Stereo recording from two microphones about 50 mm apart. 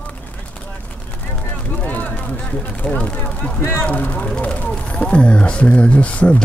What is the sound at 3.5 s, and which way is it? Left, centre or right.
Speech, left.